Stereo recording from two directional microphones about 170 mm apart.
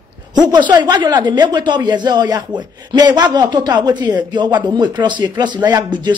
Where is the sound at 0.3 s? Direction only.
25° right (ahead or behind).